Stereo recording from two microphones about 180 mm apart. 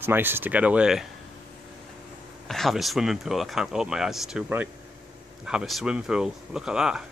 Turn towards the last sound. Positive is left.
turn(degrees=-5)  # may be behind; listen again after turning